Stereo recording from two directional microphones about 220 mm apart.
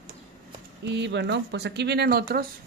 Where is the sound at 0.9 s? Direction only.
50° right (ahead or behind).